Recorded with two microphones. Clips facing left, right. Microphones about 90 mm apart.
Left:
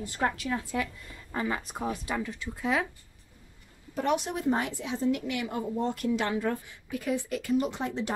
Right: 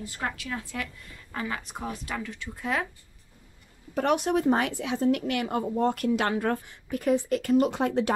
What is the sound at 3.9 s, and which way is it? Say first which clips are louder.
Speech: right 4 dB; 60° right (ahead or behind).